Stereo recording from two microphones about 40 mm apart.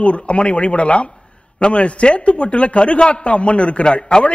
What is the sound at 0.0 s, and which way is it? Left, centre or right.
A man's voice, left.